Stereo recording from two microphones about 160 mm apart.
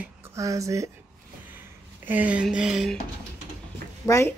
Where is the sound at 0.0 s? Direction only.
20° right (ahead or behind).